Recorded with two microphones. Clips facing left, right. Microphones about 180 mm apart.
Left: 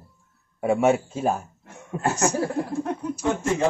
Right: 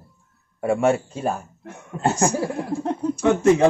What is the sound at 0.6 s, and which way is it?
Speech, 5° left (ahead or behind).